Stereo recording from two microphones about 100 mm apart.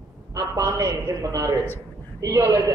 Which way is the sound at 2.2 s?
35° right (ahead or behind).